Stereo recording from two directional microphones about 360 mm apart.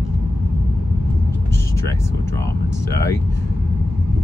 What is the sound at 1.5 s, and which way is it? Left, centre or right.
Speech, centre.